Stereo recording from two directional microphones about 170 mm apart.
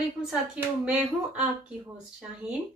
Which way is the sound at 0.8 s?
5° right (ahead or behind).